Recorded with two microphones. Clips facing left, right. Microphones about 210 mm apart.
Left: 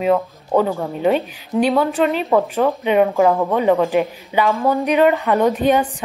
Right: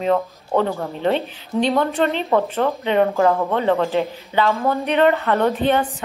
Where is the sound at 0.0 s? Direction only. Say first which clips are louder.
Left 2 dB; 10° left (ahead or behind).